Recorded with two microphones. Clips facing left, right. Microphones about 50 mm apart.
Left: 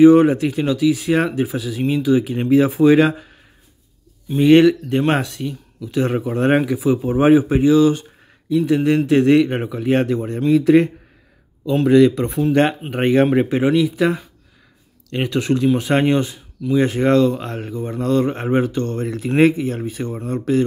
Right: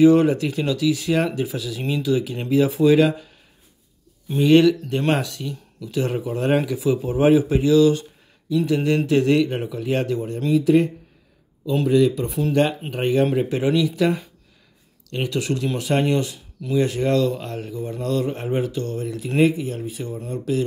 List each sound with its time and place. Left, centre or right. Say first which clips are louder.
0.0 s speech: left 4 dB; left
4.4 s speech: left 3 dB; left
11.9 s speech: left 6 dB; left
12.9 s speech: left 6 dB; left
15.0 s speech: left 4 dB; left